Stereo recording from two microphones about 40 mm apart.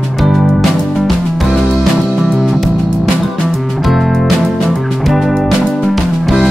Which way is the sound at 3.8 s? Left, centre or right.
Centre.